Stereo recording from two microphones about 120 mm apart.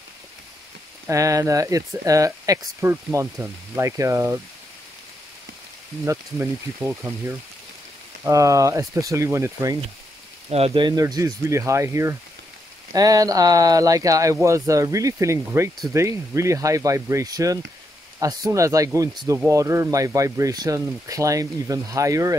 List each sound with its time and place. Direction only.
1.0 s speech: 25° right (ahead or behind)
6.0 s speech: 20° right (ahead or behind)
10.5 s speech: 50° right (ahead or behind); by 22.4 s 25° right (ahead or behind)